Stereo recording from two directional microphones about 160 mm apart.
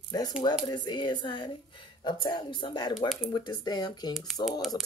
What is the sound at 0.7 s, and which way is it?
Speech, 30° left (ahead or behind).